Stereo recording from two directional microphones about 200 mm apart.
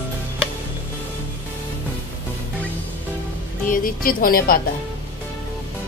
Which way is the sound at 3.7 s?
45° left (ahead or behind).